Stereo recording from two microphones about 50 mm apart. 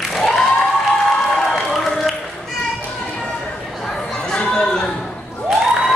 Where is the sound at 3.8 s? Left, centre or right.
Centre.